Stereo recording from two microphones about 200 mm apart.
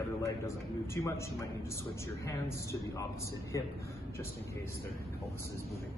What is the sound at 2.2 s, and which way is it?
Speech, 15° left (ahead or behind).